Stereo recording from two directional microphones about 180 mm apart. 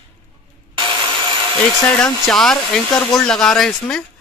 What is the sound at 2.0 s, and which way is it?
Speech, 5° left (ahead or behind).